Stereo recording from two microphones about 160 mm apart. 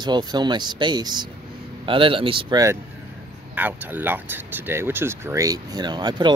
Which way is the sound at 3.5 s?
10° right (ahead or behind).